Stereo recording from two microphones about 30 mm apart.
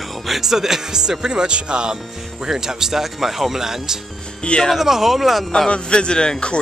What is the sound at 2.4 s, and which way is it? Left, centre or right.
Speech, centre.